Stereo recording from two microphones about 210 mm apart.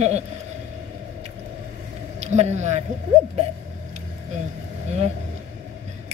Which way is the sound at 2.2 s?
30° right (ahead or behind).